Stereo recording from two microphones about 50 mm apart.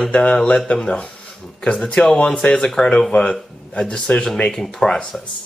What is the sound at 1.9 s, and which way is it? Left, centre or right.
Speech, centre.